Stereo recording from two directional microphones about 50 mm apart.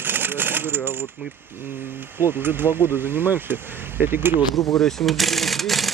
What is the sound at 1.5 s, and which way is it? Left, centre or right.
Speech, right.